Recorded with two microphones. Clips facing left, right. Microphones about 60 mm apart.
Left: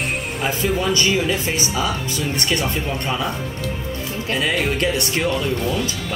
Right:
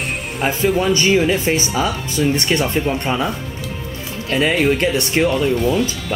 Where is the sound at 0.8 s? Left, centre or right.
Right.